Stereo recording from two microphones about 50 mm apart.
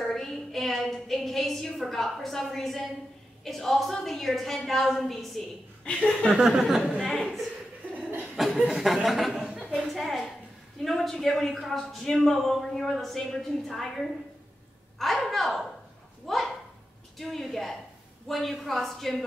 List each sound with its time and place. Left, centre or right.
0.0 s a man's voice: centre
6.3 s speech: centre
6.9 s speech: centre
8.4 s a man's voice: centre
9.4 s a sound: right
9.9 s a man's voice: centre
15.0 s a man's voice: centre